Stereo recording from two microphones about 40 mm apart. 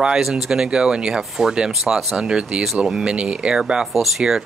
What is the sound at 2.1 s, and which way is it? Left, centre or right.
Speech, right.